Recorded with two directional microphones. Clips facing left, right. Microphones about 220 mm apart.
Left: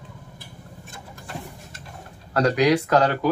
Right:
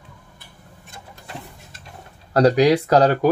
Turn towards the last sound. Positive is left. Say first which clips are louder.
# right 3 dB
turn(degrees=-35)  # may be behind; listen again after turning